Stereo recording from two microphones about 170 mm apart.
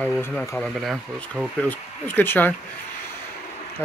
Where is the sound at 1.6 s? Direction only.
10° left (ahead or behind).